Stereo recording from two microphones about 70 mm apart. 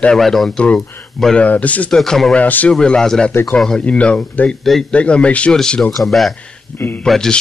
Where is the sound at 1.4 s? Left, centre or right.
Left.